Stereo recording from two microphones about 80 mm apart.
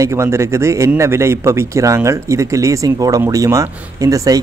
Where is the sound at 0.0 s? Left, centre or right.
Right.